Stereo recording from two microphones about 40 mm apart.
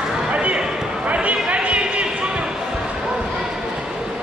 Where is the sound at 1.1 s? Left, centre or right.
Right.